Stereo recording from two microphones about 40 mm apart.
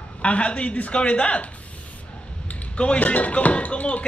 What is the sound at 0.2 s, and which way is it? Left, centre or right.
Speech, left.